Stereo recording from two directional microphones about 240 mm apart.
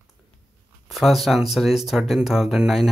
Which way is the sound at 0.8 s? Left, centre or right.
Centre.